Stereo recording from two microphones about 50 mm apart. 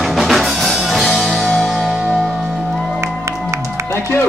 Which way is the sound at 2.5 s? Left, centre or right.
Right.